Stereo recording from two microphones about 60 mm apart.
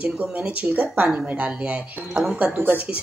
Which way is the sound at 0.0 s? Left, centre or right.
Centre.